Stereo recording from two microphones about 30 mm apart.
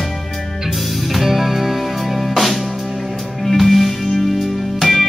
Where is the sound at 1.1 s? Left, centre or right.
Centre.